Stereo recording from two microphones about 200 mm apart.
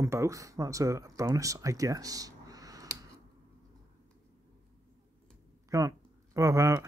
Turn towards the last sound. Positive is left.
turn(degrees=-15)  # may be behind; listen again after turning